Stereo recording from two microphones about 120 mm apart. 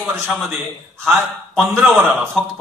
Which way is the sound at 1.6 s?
20° right (ahead or behind).